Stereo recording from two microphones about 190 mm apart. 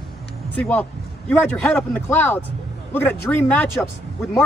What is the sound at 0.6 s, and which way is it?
Speech, 5° left (ahead or behind).